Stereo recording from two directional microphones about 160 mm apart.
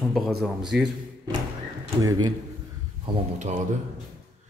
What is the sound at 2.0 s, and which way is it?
Speech, 20° right (ahead or behind).